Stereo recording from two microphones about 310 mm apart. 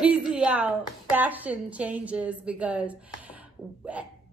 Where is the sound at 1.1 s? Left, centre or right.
Centre.